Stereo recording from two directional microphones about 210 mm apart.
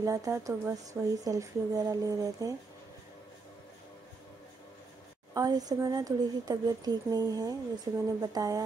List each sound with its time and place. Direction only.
0.0 s speech: 15° right (ahead or behind)
5.3 s speech: 15° right (ahead or behind)